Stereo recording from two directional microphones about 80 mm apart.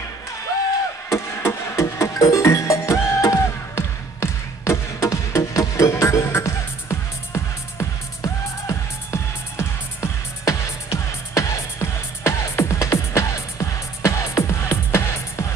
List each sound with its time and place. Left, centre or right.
1.1 s music: left